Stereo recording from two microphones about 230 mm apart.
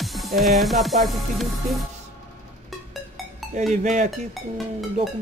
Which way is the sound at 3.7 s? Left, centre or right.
Right.